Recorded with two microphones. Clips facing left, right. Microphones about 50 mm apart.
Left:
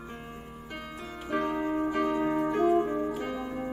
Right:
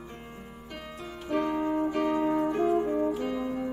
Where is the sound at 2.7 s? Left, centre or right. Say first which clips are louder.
Right 1 dB; left.